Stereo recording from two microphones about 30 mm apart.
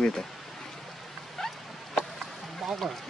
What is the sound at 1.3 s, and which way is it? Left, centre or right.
Vehicle, centre.